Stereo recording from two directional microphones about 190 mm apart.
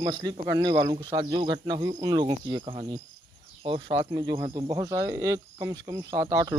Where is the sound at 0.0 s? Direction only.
20° right (ahead or behind).